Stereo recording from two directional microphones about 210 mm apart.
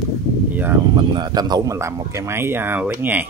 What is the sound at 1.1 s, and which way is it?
Speech, 20° right (ahead or behind).